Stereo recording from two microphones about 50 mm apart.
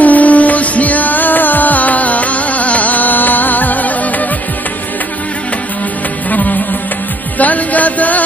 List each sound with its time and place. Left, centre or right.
0.0 s music: left
6.3 s music: left